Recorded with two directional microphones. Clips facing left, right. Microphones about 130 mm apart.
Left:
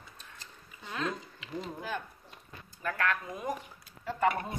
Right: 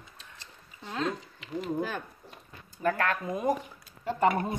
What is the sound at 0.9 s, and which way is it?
Speech, 30° right (ahead or behind).